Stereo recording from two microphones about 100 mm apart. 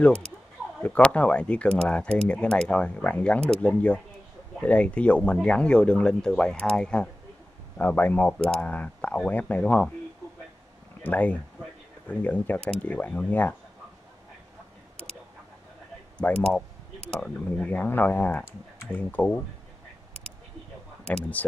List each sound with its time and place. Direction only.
0.8 s speech: 15° left (ahead or behind)
11.0 s speech: 15° left (ahead or behind)
16.2 s speech: 10° left (ahead or behind)
21.1 s speech: 15° left (ahead or behind)